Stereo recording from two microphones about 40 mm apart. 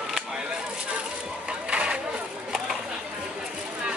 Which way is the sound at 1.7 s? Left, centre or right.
Right.